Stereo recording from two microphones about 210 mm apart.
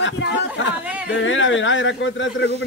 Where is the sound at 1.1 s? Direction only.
65° left (ahead or behind).